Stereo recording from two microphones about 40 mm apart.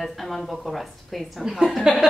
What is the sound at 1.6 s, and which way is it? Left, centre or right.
Speech, centre.